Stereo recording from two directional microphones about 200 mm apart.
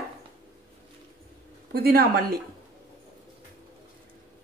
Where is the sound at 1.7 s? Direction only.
50° right (ahead or behind).